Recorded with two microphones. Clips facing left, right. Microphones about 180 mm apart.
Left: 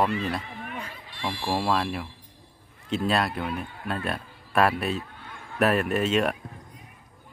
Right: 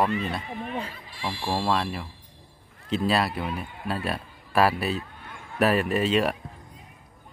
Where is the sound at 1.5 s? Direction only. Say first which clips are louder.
Even; 5° left (ahead or behind).